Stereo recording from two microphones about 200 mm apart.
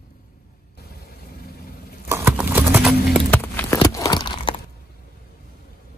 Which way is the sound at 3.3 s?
10° left (ahead or behind).